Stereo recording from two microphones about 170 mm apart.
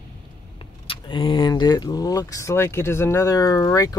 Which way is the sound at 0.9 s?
30° left (ahead or behind).